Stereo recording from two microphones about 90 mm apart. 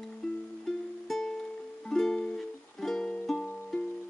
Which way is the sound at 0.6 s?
5° left (ahead or behind).